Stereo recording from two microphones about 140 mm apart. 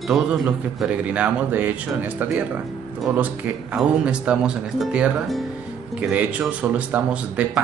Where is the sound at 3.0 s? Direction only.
10° right (ahead or behind).